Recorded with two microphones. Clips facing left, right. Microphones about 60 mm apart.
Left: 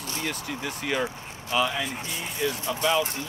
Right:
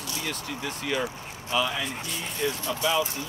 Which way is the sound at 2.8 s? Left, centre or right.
Left.